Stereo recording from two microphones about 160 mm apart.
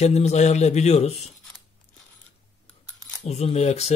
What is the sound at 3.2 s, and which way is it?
Speech, 45° left (ahead or behind).